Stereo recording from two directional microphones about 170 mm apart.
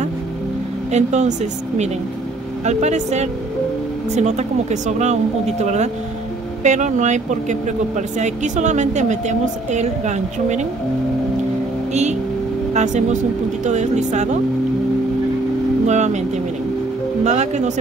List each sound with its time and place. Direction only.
0.9 s a woman's voice: 40° right (ahead or behind)
11.9 s a woman's voice: 40° right (ahead or behind)
15.9 s a woman's voice: 45° right (ahead or behind)
17.2 s a woman's voice: 40° right (ahead or behind)